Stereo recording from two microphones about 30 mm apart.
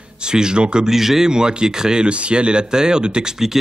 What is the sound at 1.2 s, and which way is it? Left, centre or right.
Speech, right.